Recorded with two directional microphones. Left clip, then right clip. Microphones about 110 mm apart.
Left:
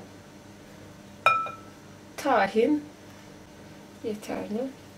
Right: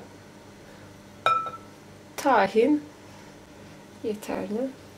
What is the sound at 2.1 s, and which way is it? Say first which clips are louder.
Speech: right 2 dB; 30° right (ahead or behind).